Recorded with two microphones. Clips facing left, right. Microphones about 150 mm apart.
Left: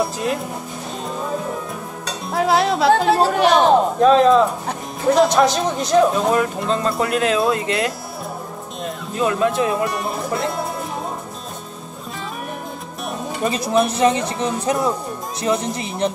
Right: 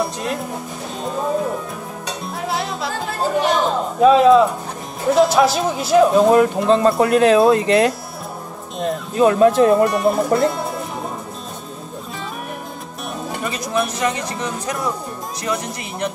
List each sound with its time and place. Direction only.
0.0 s speech: centre (ahead or behind)
2.3 s music: 90° left; by 3.6 s 75° left (ahead or behind)
4.0 s speech: 5° right (ahead or behind)
6.1 s speech: 30° right (ahead or behind)
9.8 s speech: centre (ahead or behind)
13.5 s speech: 25° left (ahead or behind)